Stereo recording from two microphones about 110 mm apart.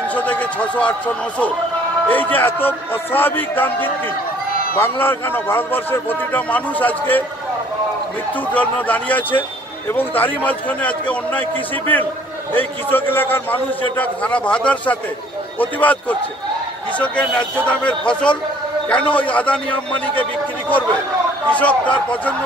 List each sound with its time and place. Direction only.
0.1 s a man's voice: 15° left (ahead or behind)
8.5 s a man's voice: 15° left (ahead or behind)
21.5 s a man's voice: 10° left (ahead or behind)